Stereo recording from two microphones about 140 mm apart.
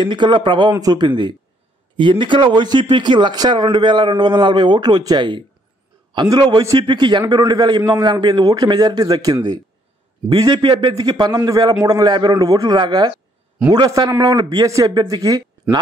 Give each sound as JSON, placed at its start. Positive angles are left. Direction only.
{"t": 0.0, "sound": "a man's voice", "side_deg": -35}